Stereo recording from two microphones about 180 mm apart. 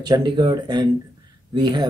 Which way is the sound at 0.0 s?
25° right (ahead or behind).